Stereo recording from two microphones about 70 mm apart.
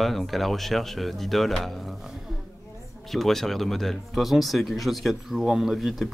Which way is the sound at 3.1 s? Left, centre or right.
Centre.